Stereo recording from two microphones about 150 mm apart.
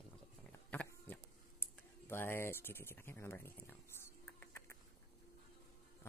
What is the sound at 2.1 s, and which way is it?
Speech, 15° left (ahead or behind).